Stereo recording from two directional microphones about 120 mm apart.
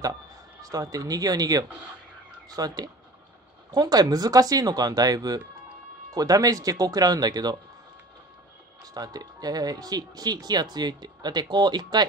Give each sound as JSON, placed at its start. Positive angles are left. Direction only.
{"t": 0.6, "sound": "speech", "side_deg": -30}
{"t": 8.9, "sound": "speech", "side_deg": -30}